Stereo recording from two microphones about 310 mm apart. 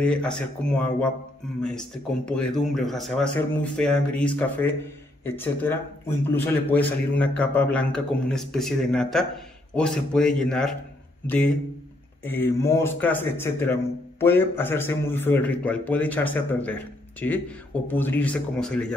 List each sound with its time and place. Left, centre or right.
0.0 s a man's voice: centre